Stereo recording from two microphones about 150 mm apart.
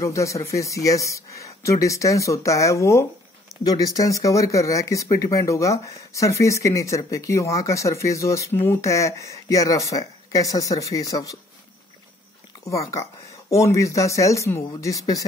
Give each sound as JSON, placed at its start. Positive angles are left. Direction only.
{"t": 0.0, "sound": "speech", "side_deg": 20}
{"t": 12.6, "sound": "speech", "side_deg": 20}